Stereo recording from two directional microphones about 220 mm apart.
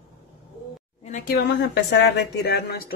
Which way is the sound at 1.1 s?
40° left (ahead or behind).